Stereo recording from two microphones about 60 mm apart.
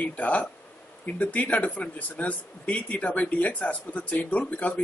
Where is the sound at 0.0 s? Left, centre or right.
Left.